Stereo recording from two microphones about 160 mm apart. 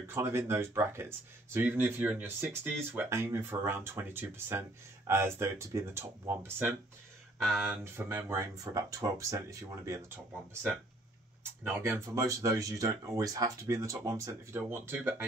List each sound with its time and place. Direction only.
0.0 s speech: 15° right (ahead or behind)
11.6 s speech: 15° right (ahead or behind)